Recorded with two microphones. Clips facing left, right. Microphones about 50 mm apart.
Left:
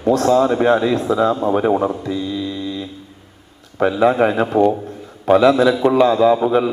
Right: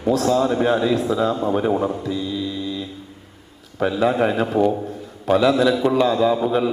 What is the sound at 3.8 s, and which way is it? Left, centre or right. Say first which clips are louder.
A man's voice: left 4 dB; centre.